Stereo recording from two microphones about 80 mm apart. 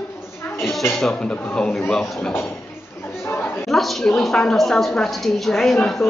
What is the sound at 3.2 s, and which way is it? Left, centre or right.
Chatter, left.